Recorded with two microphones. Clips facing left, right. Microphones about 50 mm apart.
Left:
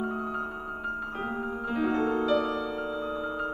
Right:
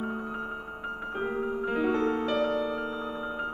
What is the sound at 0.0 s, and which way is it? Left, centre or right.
Music, right.